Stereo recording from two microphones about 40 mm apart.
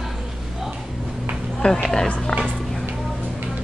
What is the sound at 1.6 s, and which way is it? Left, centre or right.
Speech, centre.